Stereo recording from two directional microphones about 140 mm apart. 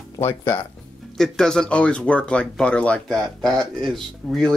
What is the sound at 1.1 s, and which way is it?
Speech, 5° left (ahead or behind).